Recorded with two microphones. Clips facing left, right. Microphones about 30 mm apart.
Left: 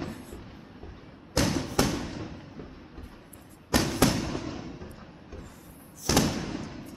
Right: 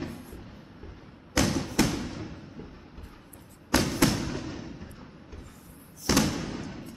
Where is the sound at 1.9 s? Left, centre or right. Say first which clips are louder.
Even; centre.